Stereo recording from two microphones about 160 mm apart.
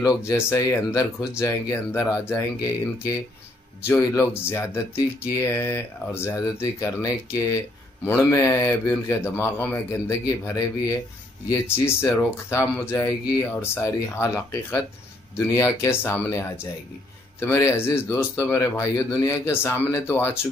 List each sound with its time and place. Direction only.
0.3 s speech: 20° left (ahead or behind)
10.2 s speech: 25° left (ahead or behind)